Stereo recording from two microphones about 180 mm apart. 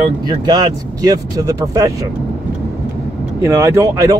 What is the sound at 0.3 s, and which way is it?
Speech, 25° right (ahead or behind).